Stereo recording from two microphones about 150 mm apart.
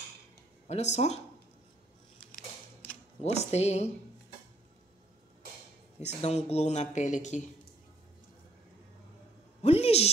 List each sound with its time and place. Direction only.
0.7 s speech: 50° left (ahead or behind)
3.3 s speech: 45° left (ahead or behind)
6.2 s speech: 45° left (ahead or behind)
9.6 s a sound: 40° left (ahead or behind)